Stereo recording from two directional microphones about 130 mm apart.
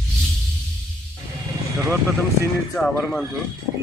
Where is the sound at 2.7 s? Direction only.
Centre (ahead or behind).